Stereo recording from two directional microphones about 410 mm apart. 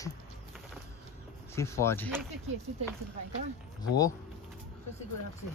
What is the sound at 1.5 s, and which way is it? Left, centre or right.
Speech, centre.